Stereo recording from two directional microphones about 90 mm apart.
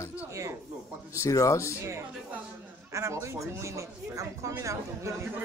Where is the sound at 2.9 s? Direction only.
35° right (ahead or behind).